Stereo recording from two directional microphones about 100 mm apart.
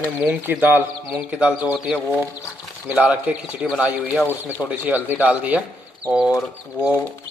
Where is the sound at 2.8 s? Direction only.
15° right (ahead or behind).